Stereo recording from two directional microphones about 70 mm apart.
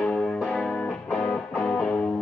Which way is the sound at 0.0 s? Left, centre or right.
Centre.